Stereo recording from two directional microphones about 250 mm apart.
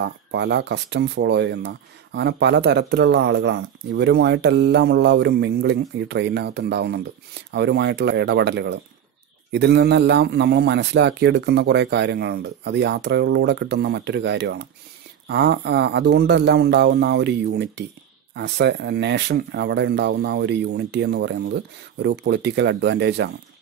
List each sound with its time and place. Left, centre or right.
0.0 s speech: right